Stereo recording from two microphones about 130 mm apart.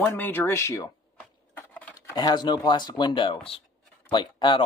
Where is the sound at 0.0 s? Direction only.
15° left (ahead or behind).